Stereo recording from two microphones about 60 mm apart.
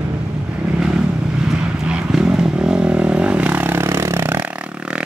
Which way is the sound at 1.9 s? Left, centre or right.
Centre.